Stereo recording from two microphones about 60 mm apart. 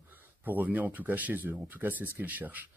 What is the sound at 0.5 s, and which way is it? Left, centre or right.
Speech, right.